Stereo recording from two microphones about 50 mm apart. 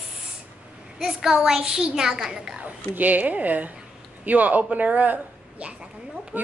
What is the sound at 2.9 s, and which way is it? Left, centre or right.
Speech, right.